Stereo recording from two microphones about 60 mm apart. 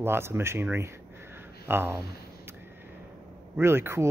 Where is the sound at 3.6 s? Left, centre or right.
Right.